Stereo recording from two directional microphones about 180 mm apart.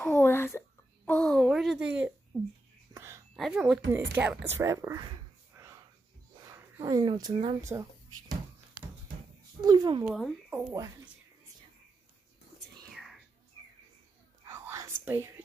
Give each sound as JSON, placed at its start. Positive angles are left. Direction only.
{"t": 0.0, "sound": "a sound", "side_deg": 10}
{"t": 2.9, "sound": "whispering", "side_deg": -15}
{"t": 3.3, "sound": "speech", "side_deg": 0}
{"t": 5.5, "sound": "whispering", "side_deg": -15}
{"t": 6.4, "sound": "speech", "side_deg": -20}
{"t": 9.6, "sound": "speech", "side_deg": -25}
{"t": 10.0, "sound": "speech", "side_deg": -5}
{"t": 12.9, "sound": "whispering", "side_deg": 0}
{"t": 14.4, "sound": "whispering", "side_deg": -15}